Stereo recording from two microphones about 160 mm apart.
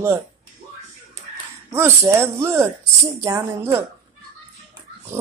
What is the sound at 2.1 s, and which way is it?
Speech, 15° right (ahead or behind).